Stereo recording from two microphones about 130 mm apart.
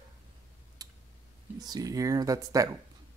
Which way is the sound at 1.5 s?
30° right (ahead or behind).